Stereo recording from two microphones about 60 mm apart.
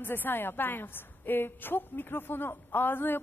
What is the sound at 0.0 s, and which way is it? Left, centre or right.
A woman's voice, left.